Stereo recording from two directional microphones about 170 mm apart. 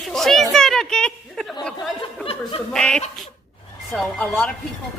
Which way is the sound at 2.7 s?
5° left (ahead or behind).